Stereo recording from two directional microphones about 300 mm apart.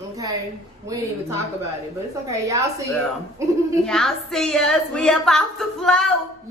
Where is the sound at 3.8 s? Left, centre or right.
Centre.